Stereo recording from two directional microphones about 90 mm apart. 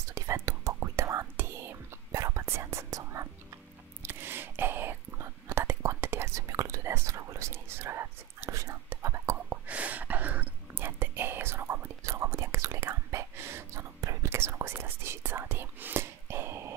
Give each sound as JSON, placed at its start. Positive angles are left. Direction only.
{"t": 0.1, "sound": "whispering", "side_deg": -35}
{"t": 9.7, "sound": "whispering", "side_deg": -15}